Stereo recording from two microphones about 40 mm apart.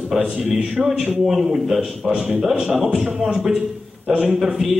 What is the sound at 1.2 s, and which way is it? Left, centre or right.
A man's voice, centre.